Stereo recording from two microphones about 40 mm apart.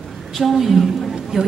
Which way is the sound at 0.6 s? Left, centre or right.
Centre.